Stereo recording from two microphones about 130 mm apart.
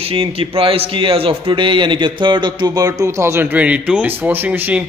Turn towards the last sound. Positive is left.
turn(degrees=-15)  # may be behind; listen again after turning